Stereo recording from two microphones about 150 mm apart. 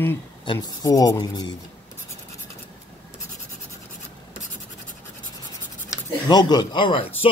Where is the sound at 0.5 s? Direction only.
25° left (ahead or behind).